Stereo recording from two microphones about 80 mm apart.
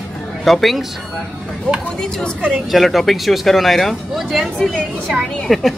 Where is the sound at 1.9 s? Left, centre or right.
Centre.